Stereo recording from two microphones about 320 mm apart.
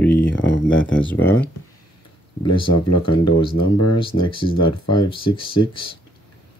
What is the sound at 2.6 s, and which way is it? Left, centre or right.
Speech, left.